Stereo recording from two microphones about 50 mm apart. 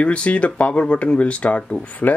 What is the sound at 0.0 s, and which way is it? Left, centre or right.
Speech, left.